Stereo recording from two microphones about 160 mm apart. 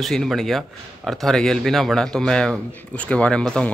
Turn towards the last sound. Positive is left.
turn(degrees=5)  # may be behind; listen again after turning